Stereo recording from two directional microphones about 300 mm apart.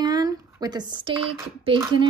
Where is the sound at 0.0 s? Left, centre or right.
Centre.